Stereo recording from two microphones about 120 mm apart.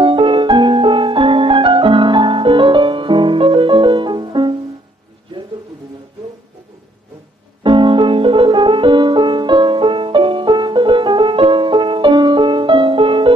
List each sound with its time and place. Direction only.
0.0 s music: 45° right (ahead or behind)
7.6 s music: 45° right (ahead or behind)